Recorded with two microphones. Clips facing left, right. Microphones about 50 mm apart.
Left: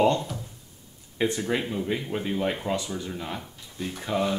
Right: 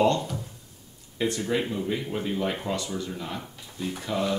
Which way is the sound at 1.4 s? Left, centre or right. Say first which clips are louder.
Even; centre.